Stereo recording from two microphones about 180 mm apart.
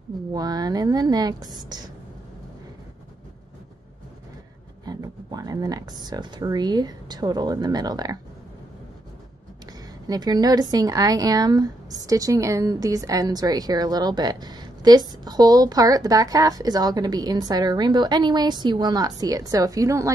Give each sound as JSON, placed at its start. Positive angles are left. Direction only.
{"t": 0.3, "sound": "speech", "side_deg": -20}
{"t": 4.8, "sound": "speech", "side_deg": -20}
{"t": 10.0, "sound": "speech", "side_deg": -20}